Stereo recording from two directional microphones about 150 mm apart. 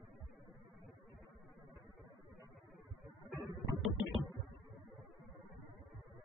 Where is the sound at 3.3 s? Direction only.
Centre (ahead or behind).